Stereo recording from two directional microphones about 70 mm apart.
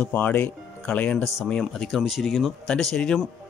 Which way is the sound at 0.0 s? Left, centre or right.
Left.